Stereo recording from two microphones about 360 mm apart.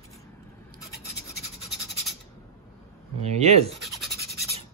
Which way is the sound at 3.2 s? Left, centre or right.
Centre.